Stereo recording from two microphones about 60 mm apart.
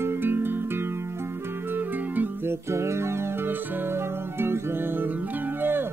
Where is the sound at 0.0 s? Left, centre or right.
Right.